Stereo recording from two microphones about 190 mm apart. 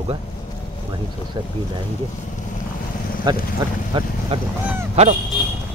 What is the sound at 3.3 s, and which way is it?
Speech, 20° right (ahead or behind).